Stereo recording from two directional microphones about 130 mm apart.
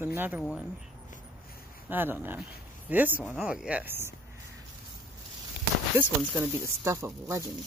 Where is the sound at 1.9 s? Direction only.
15° right (ahead or behind).